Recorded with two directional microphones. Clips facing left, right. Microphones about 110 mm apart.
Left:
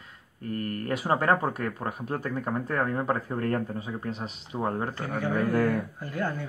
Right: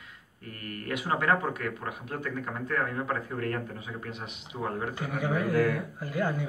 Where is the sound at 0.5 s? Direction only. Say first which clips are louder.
Left 6 dB; 40° left (ahead or behind).